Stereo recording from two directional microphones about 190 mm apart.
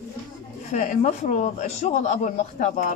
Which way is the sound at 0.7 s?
40° left (ahead or behind).